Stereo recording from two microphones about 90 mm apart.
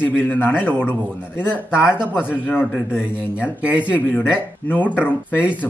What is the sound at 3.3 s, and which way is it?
Speech, 15° right (ahead or behind).